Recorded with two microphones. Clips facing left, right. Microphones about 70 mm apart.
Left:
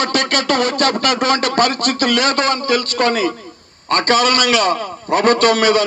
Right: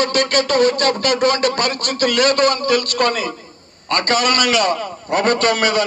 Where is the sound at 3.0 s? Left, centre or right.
Left.